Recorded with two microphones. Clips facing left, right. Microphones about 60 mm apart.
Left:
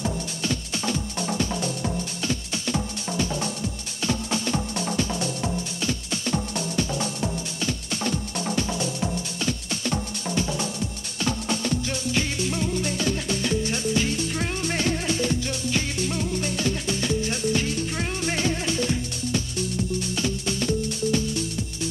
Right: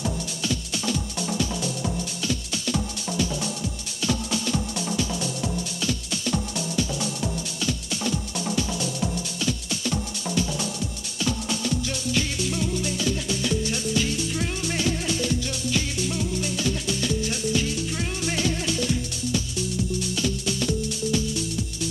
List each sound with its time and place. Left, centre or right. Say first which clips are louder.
0.4 s music: left 1 dB; left